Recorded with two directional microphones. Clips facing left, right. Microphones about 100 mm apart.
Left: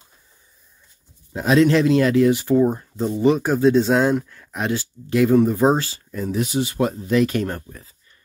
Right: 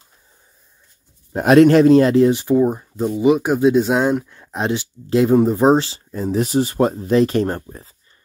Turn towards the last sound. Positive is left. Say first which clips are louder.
# right 4 dB
turn(degrees=-30)  # may be behind; listen again after turning